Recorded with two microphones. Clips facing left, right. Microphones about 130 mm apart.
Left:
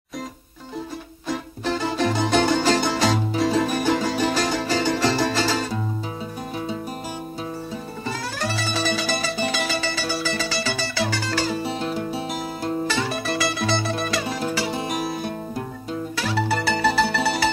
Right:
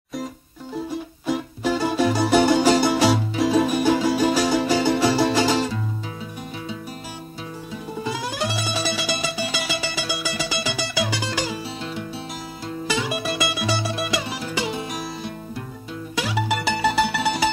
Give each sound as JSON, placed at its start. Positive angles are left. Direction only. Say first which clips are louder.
{"t": 1.2, "sound": "music", "louder": "right 3 dB", "side_deg": -10}
{"t": 8.0, "sound": "music", "louder": "right 3 dB", "side_deg": -15}
{"t": 11.6, "sound": "music", "louder": "left 5 dB", "side_deg": 50}
{"t": 12.8, "sound": "music", "louder": "even", "side_deg": -15}
{"t": 14.9, "sound": "music", "louder": "left 4 dB", "side_deg": 50}
{"t": 16.2, "sound": "music", "louder": "right 1 dB", "side_deg": -15}